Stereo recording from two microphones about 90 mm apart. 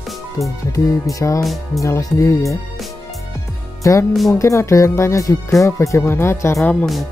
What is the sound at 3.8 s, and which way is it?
Speech, 35° left (ahead or behind).